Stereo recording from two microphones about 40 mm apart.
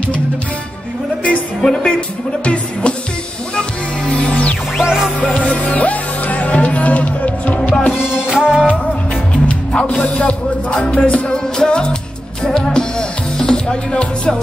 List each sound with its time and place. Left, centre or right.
1.6 s music: centre
4.8 s music: centre
5.4 s music: left
5.8 s music: left
8.0 s music: centre
8.6 s music: left